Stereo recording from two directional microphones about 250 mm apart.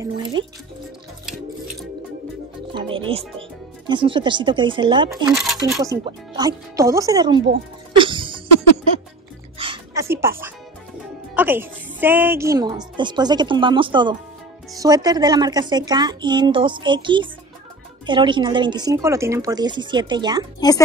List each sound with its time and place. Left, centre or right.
0.0 s a woman's voice: centre
2.7 s speech: right
5.1 s speech: centre
5.8 s a woman's voice: centre
8.0 s music: centre
9.6 s music: centre
11.3 s a woman's voice: centre